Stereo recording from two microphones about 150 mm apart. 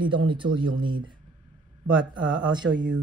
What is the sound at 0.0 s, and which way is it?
Speech, 35° right (ahead or behind).